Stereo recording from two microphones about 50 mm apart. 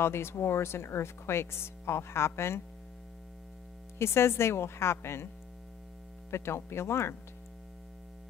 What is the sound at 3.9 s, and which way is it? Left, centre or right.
A woman's voice, left.